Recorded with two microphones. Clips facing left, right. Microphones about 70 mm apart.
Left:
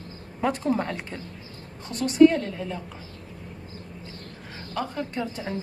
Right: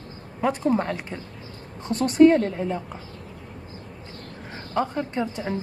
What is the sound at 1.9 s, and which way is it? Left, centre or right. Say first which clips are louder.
Speech: right 1 dB; right.